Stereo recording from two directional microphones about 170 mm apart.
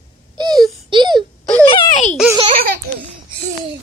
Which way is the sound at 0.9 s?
25° right (ahead or behind).